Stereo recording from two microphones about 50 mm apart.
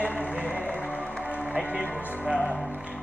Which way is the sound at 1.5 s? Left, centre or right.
Right.